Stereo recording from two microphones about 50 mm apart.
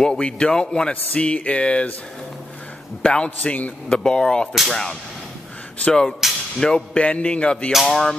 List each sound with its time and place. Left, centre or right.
0.0 s a man's voice: centre
3.0 s a man's voice: centre
3.3 s a man's voice: left
4.0 s a man's voice: centre
7.8 s a man's voice: centre